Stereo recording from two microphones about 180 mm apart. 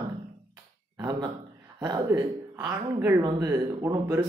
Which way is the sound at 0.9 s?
20° right (ahead or behind).